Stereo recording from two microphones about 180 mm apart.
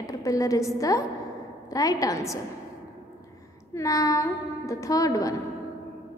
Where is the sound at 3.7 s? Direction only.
20° left (ahead or behind).